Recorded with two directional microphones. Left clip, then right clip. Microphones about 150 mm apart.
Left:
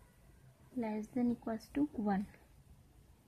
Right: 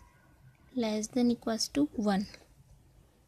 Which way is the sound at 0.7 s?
40° right (ahead or behind).